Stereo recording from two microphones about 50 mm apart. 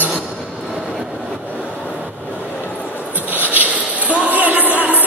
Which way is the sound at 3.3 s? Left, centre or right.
Right.